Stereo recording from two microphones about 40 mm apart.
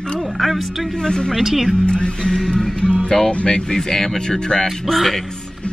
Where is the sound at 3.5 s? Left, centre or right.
Centre.